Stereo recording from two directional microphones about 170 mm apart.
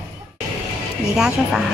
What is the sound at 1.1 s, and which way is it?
Speech, 5° right (ahead or behind).